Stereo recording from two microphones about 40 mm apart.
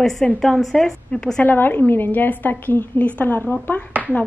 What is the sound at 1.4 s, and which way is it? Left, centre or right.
A woman's voice, left.